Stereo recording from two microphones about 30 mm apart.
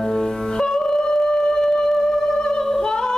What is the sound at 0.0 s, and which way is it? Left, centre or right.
Music, centre.